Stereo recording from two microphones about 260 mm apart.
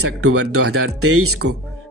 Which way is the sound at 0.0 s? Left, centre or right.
Right.